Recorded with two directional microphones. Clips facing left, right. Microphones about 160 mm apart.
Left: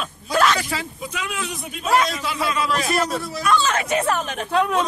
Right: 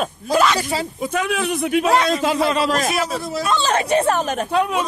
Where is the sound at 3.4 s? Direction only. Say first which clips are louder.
Even; 30° right (ahead or behind).